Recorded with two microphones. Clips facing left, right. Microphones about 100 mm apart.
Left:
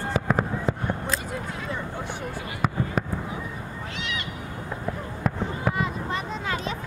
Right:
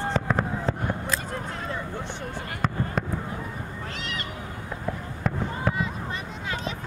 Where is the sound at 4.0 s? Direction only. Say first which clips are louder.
Left 3 dB; 40° right (ahead or behind).